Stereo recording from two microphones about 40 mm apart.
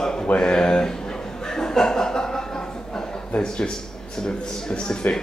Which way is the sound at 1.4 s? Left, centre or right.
Centre.